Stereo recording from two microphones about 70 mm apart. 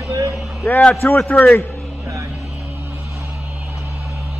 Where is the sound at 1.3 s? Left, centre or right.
Left.